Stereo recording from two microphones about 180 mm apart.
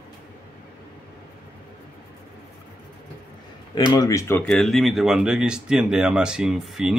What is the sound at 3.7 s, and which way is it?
Speech, 20° left (ahead or behind).